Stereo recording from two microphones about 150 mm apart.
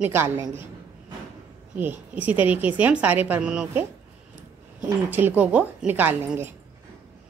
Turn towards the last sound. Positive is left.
turn(degrees=-15)  # may be behind; listen again after turning